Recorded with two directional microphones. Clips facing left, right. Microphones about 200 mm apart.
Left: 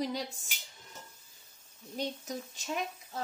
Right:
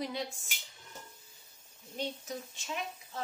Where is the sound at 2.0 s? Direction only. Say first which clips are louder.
Left 2 dB; 40° left (ahead or behind).